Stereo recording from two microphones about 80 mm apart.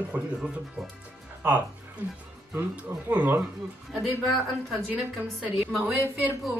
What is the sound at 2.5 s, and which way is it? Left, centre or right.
Speech, right.